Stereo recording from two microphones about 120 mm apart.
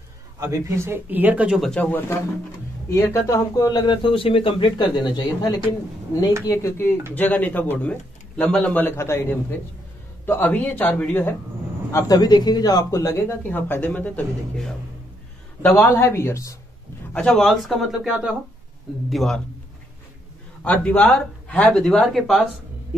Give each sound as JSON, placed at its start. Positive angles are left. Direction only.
{"t": 0.4, "sound": "speech", "side_deg": -25}
{"t": 1.7, "sound": "speech", "side_deg": 15}
{"t": 6.4, "sound": "speech", "side_deg": 25}
{"t": 11.9, "sound": "speech", "side_deg": 35}
{"t": 15.7, "sound": "speech", "side_deg": 20}
{"t": 17.1, "sound": "speech", "side_deg": 5}
{"t": 19.0, "sound": "speech", "side_deg": 0}
{"t": 20.6, "sound": "speech", "side_deg": 10}